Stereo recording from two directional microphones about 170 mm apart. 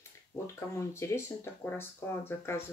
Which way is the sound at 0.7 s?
15° left (ahead or behind).